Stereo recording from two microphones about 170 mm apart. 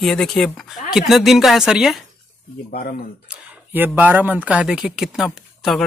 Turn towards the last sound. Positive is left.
turn(degrees=0)  # may be behind; listen again after turning